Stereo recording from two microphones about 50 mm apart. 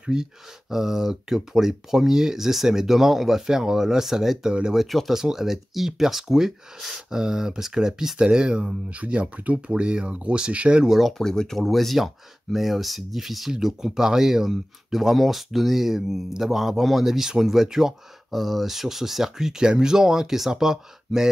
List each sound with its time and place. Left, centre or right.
0.0 s speech: centre
11.0 s speech: centre
11.2 s speech: centre